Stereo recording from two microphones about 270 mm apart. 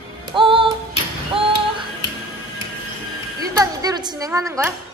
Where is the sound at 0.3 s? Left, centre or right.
Centre.